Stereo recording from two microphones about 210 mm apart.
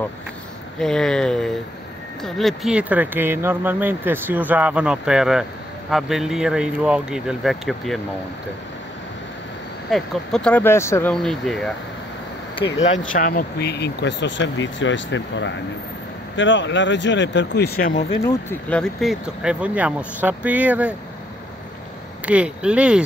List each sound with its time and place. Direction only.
0.7 s speech: centre (ahead or behind)
9.8 s speech: centre (ahead or behind)
12.6 s speech: 60° left (ahead or behind)
13.2 s speech: 45° left (ahead or behind)
18.2 s speech: 10° left (ahead or behind); by 20.9 s 5° right (ahead or behind)
22.2 s speech: 5° right (ahead or behind)